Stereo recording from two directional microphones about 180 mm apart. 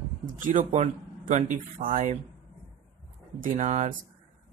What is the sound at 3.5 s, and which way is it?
Speech, 40° right (ahead or behind).